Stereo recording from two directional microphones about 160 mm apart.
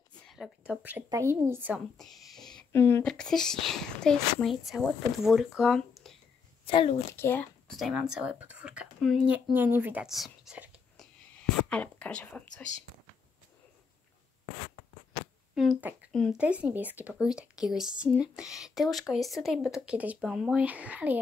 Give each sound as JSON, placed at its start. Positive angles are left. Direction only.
{"t": 0.2, "sound": "speech", "side_deg": 0}
{"t": 2.0, "sound": "a sound", "side_deg": 0}
{"t": 2.7, "sound": "speech", "side_deg": 15}
{"t": 3.1, "sound": "speech", "side_deg": 5}
{"t": 6.6, "sound": "a child's voice", "side_deg": 35}
{"t": 7.2, "sound": "speech", "side_deg": 10}
{"t": 7.8, "sound": "speech", "side_deg": -5}
{"t": 11.7, "sound": "speech", "side_deg": 10}
{"t": 15.5, "sound": "speech", "side_deg": 0}
{"t": 16.3, "sound": "speech", "side_deg": -10}